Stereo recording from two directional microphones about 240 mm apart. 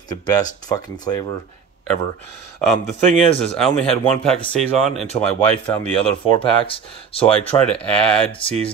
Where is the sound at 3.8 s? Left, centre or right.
Centre.